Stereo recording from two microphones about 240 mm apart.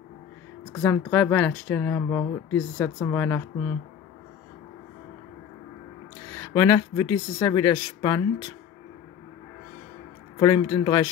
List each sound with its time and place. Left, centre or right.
0.7 s speech: centre
6.5 s speech: centre
10.4 s speech: centre